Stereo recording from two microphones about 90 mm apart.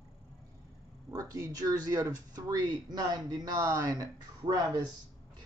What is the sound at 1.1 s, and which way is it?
Speech, 40° right (ahead or behind).